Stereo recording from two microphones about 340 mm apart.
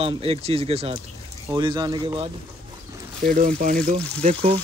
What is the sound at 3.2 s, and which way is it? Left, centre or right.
Speech, right.